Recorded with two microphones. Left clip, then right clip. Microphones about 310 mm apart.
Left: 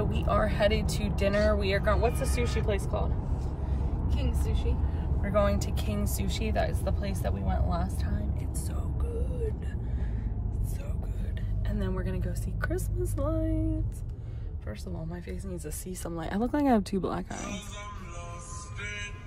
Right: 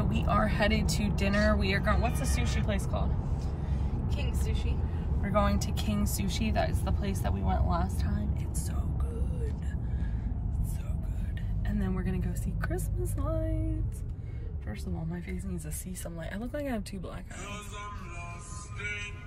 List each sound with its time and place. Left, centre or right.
0.0 s speech: centre
5.2 s speech: centre
11.6 s speech: centre
15.1 s speech: centre